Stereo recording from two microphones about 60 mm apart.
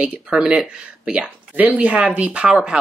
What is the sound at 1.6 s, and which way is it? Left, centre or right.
Speech, right.